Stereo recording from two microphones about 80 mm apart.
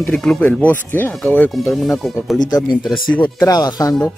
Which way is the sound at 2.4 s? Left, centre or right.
Left.